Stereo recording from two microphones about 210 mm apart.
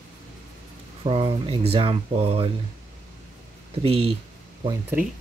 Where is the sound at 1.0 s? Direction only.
25° right (ahead or behind).